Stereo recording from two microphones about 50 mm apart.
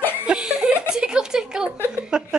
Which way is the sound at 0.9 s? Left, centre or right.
Centre.